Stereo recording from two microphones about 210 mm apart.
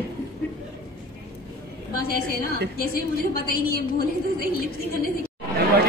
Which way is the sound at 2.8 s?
45° left (ahead or behind).